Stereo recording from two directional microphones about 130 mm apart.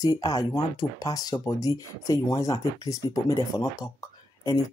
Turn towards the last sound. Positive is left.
turn(degrees=25)  # may be behind; listen again after turning